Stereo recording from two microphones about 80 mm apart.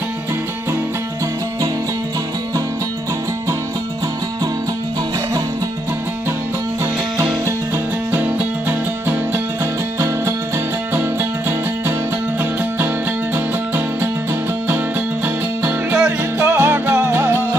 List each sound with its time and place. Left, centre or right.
7.4 s music: right
9.9 s music: right